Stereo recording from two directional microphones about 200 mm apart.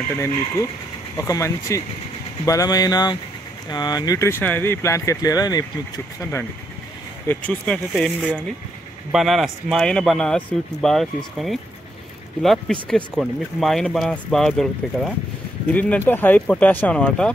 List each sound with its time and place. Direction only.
0.1 s speech: 15° left (ahead or behind)
7.2 s speech: 5° left (ahead or behind)